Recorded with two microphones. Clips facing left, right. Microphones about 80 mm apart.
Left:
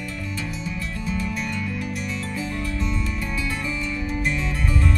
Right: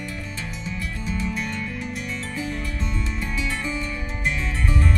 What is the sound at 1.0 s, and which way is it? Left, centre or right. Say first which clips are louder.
Music: even; right.